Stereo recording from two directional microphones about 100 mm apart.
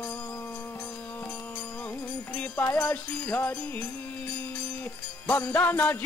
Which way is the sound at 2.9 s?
20° left (ahead or behind).